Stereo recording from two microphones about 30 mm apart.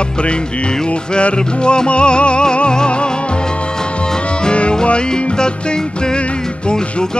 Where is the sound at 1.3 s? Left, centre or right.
Left.